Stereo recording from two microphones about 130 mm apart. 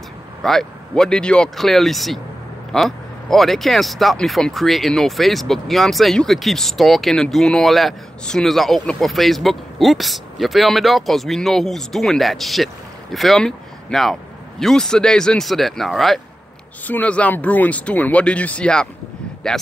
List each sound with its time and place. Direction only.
0.4 s speech: 5° left (ahead or behind)